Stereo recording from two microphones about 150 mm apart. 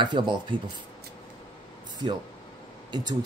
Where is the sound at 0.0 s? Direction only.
30° right (ahead or behind).